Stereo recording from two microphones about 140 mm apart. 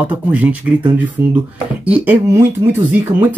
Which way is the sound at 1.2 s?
20° right (ahead or behind).